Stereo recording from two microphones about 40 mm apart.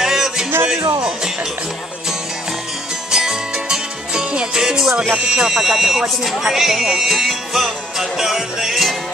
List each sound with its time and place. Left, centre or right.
0.0 s music: centre
3.1 s music: centre
5.4 s speech: centre
6.5 s music: centre
8.0 s speech: centre